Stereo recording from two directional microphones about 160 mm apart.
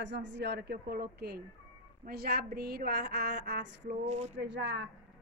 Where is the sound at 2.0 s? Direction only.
75° right (ahead or behind); by 3.9 s 90° right.